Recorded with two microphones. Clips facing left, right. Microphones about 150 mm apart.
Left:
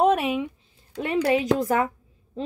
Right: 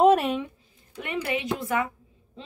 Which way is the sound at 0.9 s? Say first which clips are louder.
Left 7 dB; 35° left (ahead or behind).